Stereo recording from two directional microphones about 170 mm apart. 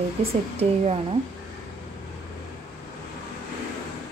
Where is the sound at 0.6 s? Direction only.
35° right (ahead or behind).